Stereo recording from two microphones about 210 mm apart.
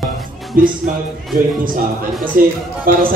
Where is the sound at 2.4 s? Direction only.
40° right (ahead or behind).